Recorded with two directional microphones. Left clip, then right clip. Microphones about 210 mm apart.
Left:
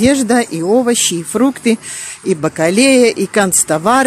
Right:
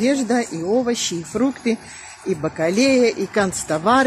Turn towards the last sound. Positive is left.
turn(degrees=35)  # may be behind; listen again after turning